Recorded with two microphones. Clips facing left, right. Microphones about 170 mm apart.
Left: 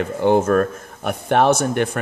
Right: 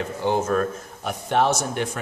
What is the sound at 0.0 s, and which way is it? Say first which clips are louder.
Speech: left 7 dB; 55° left (ahead or behind).